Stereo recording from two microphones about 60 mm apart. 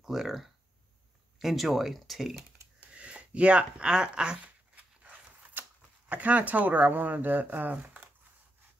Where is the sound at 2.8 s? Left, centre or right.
Right.